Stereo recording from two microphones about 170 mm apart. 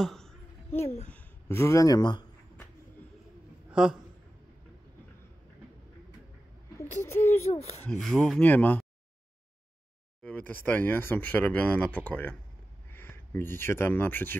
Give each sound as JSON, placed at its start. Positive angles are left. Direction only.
{"t": 0.0, "sound": "a sound", "side_deg": 0}
{"t": 0.7, "sound": "a child's voice", "side_deg": 40}
{"t": 1.1, "sound": "speech", "side_deg": 15}
{"t": 7.0, "sound": "speech", "side_deg": 15}
{"t": 10.2, "sound": "speech", "side_deg": 10}